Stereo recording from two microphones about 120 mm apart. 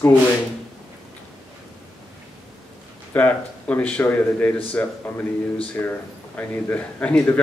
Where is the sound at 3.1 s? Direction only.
15° left (ahead or behind).